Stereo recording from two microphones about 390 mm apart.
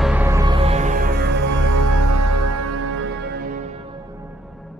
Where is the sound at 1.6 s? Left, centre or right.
Right.